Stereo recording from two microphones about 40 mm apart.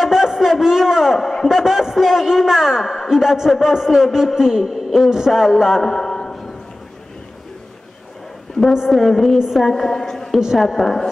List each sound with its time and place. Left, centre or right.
0.0 s a sound: centre
1.5 s a man's voice: centre
5.8 s a sound: centre
8.9 s a woman's voice: centre
10.3 s a man's voice: centre
10.8 s a woman's voice: centre